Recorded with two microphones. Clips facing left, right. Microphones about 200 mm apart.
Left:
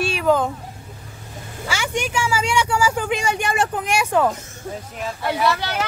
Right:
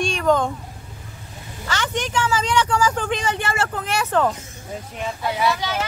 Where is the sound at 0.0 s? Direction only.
5° left (ahead or behind).